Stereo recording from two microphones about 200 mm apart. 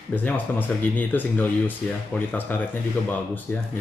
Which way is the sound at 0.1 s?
10° left (ahead or behind).